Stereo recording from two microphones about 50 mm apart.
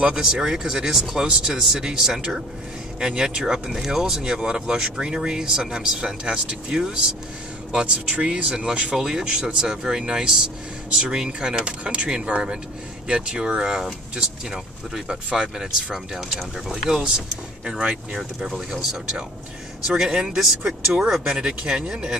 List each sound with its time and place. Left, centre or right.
0.0 s speech: centre
19.9 s speech: centre